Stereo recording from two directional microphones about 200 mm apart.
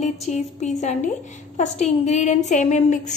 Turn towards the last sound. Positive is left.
turn(degrees=35)  # may be behind; listen again after turning